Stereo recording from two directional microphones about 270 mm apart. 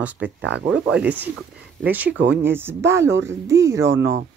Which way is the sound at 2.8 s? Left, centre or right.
Right.